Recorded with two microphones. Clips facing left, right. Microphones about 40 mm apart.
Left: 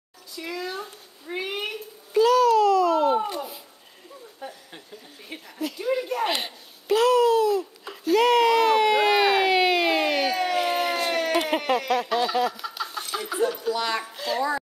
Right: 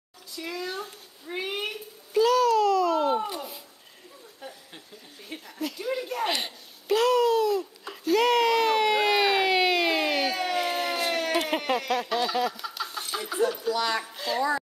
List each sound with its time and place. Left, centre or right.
0.4 s a sound: centre
13.7 s speech: centre
14.1 s speech: centre